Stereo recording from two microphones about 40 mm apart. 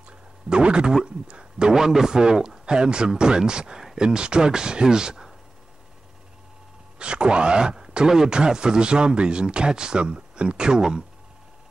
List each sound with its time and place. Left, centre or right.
0.5 s speech: right
1.4 s a man's voice: centre
7.0 s speech: right